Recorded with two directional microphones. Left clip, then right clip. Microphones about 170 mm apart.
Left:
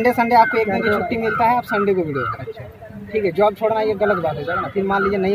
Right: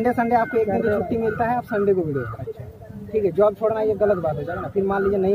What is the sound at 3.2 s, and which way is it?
A man's voice, 5° right (ahead or behind).